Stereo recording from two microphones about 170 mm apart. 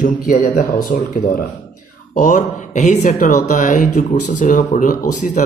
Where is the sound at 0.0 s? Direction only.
55° left (ahead or behind).